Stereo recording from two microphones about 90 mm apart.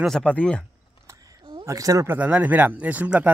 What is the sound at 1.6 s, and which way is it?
Speech, 35° right (ahead or behind).